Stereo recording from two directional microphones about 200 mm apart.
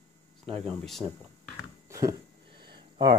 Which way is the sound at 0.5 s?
Centre (ahead or behind).